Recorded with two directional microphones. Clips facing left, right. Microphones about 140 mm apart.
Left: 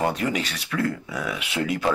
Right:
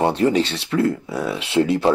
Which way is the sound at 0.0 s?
30° right (ahead or behind).